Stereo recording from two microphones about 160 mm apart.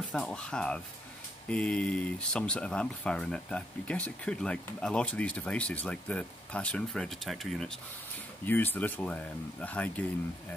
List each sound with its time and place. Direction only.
0.1 s speech: 5° left (ahead or behind)
8.5 s speech: 10° left (ahead or behind)